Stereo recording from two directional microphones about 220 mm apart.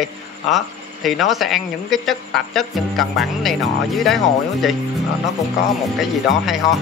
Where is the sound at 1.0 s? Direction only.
Centre (ahead or behind).